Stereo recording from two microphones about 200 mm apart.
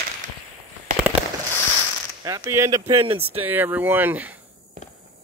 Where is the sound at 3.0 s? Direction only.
30° right (ahead or behind).